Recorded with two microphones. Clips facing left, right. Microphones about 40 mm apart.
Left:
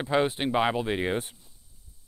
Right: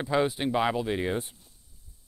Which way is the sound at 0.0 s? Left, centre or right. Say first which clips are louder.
Left 1 dB; left.